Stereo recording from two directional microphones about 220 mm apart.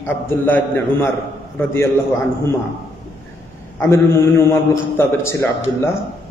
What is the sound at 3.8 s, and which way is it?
A man's voice, 10° left (ahead or behind).